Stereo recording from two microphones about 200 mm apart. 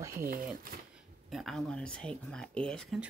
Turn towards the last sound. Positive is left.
turn(degrees=5)  # may be behind; listen again after turning